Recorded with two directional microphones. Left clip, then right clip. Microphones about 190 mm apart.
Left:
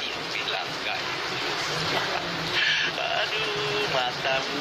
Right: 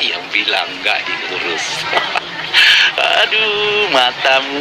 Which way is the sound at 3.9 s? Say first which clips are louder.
Right 13 dB; 45° right (ahead or behind).